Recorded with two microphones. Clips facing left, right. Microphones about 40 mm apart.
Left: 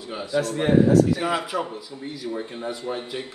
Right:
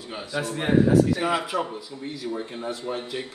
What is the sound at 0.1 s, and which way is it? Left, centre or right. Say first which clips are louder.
A man's voice: left 4 dB; centre.